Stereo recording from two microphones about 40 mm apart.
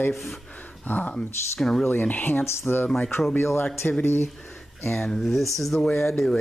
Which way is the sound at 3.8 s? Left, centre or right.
Left.